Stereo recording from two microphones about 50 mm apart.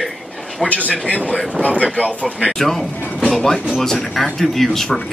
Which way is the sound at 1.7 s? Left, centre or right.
Right.